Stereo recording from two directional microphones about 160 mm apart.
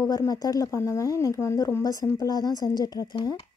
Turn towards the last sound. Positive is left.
turn(degrees=25)  # may be behind; listen again after turning